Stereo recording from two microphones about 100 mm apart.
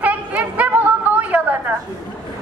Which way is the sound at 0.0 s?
15° right (ahead or behind).